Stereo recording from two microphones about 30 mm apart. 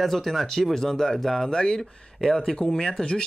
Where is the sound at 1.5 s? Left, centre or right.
Left.